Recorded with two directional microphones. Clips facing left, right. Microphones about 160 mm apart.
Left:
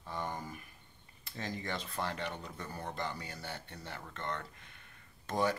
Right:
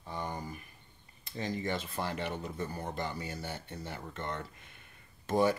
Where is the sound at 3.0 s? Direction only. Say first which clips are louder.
Right 3 dB; 5° right (ahead or behind).